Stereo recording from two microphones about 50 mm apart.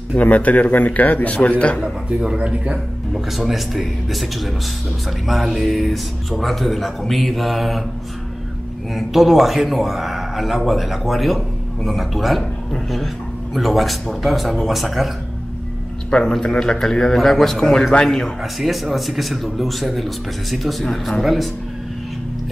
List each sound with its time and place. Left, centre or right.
0.1 s a man's voice: left
2.0 s speech: right
3.3 s a man's voice: centre
8.9 s a man's voice: centre
13.6 s a man's voice: centre
16.1 s a man's voice: centre
18.6 s a man's voice: centre